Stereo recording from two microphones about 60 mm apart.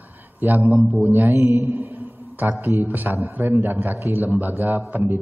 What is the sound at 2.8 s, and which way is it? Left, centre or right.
A man's voice, right.